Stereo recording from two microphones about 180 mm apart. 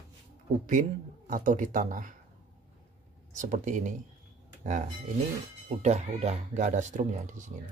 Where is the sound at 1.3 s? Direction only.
45° right (ahead or behind).